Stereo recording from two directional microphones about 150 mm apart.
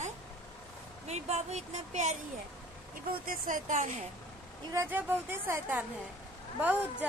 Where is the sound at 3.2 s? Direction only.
60° right (ahead or behind).